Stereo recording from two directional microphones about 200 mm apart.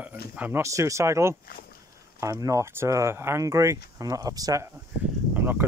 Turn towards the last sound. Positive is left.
turn(degrees=-10)  # may be behind; listen again after turning